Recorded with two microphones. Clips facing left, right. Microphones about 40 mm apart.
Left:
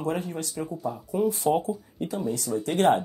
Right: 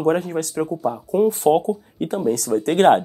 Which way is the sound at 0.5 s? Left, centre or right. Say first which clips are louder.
Right 9 dB; right.